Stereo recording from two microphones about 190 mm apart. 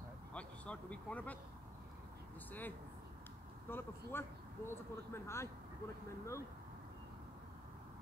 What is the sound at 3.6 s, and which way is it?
Speech, 10° left (ahead or behind).